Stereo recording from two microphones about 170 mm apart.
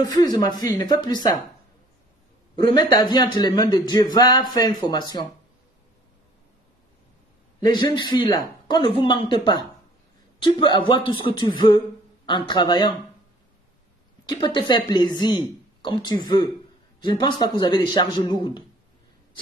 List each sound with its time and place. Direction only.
0.4 s speech: 25° left (ahead or behind)
2.5 s speech: 25° left (ahead or behind)
7.7 s speech: 25° left (ahead or behind)
14.4 s speech: 25° left (ahead or behind)